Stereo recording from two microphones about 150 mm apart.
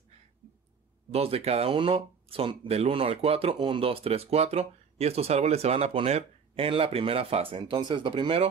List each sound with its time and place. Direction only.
1.1 s speech: 40° right (ahead or behind)